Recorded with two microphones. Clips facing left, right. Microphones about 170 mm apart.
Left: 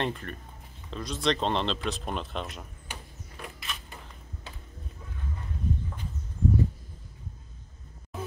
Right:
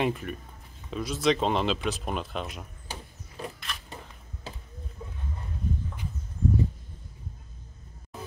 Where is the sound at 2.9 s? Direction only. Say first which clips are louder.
Right 2 dB; 30° right (ahead or behind).